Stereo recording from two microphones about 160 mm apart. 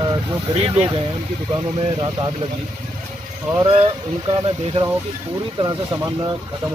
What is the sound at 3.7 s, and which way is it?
Speech, 35° right (ahead or behind).